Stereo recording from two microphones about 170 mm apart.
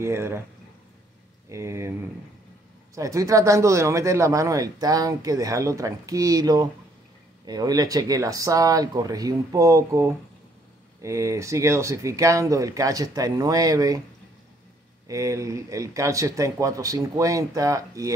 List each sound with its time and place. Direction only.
0.0 s speech: 15° right (ahead or behind)
1.5 s speech: 15° right (ahead or behind)
15.0 s speech: 20° right (ahead or behind)